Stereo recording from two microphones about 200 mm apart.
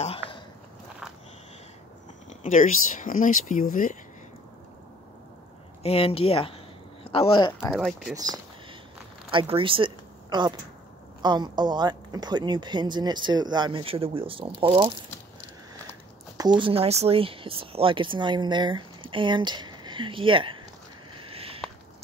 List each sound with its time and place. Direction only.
0.0 s sniff: 30° left (ahead or behind)
2.2 s speech: 40° left (ahead or behind)
5.8 s speech: 30° left (ahead or behind)
7.7 s speech: centre (ahead or behind)
9.3 s speech: 25° right (ahead or behind)
16.5 s speech: 25° right (ahead or behind)
21.2 s a sound: 30° right (ahead or behind)